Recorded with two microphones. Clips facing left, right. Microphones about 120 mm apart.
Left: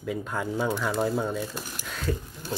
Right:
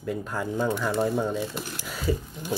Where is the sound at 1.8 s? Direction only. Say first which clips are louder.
Right 3 dB; 5° right (ahead or behind).